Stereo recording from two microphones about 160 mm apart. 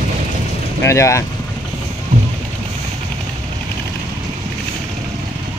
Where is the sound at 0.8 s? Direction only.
20° left (ahead or behind).